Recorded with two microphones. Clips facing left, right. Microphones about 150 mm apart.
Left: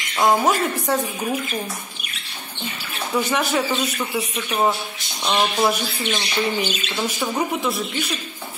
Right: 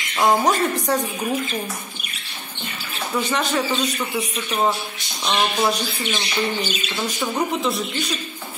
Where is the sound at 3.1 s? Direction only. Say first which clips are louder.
Left 1 dB; 10° left (ahead or behind).